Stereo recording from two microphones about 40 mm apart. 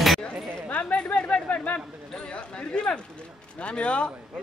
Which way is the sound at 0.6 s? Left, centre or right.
Left.